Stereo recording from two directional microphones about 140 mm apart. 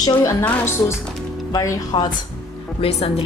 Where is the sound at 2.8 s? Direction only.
45° left (ahead or behind).